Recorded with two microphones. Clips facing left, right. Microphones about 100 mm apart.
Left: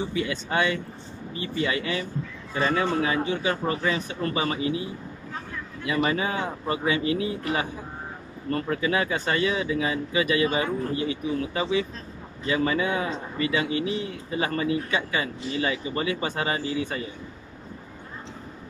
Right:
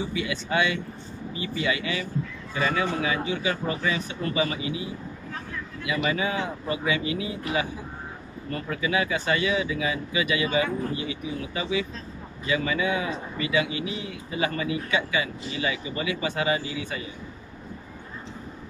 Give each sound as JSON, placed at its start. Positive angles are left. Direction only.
{"t": 0.1, "sound": "a man's voice", "side_deg": 40}
{"t": 5.9, "sound": "a man's voice", "side_deg": 40}